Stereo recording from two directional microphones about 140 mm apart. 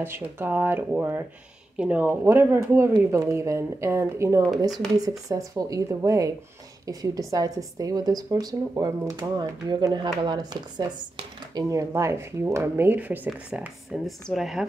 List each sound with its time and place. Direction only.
0.0 s speech: 15° right (ahead or behind)